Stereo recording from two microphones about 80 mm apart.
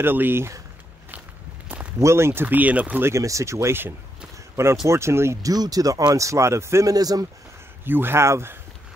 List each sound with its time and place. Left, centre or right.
0.0 s speech: right
2.0 s speech: right; by 3.0 s centre
3.0 s speech: right
5.5 s speech: right
6.9 s speech: right
7.8 s speech: right